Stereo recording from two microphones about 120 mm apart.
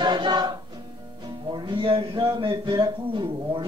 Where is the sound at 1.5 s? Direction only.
40° right (ahead or behind).